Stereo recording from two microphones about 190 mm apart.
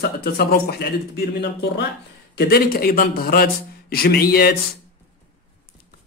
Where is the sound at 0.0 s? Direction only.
55° left (ahead or behind).